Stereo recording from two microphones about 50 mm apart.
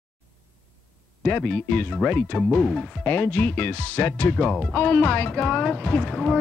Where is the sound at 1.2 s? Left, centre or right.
Left.